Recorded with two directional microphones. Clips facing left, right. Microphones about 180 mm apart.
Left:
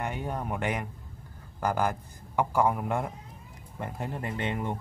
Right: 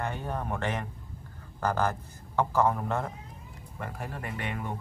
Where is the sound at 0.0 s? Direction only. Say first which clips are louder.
Even; 15° left (ahead or behind).